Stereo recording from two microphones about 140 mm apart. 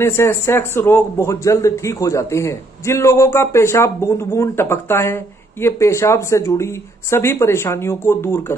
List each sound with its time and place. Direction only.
0.0 s a man's voice: 15° left (ahead or behind)